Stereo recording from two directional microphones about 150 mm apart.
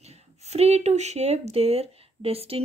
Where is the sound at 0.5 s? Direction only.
45° right (ahead or behind).